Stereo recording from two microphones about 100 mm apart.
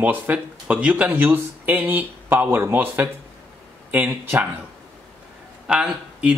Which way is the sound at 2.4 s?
30° right (ahead or behind).